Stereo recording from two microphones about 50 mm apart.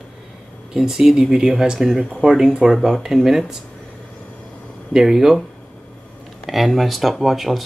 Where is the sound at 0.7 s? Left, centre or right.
Centre.